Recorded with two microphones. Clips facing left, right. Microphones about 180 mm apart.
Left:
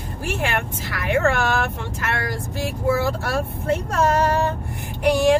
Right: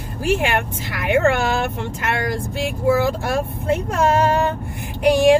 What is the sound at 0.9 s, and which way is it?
Speech, 20° right (ahead or behind).